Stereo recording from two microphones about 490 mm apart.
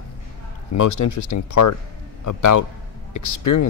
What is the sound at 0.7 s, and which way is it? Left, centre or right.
Speech, left.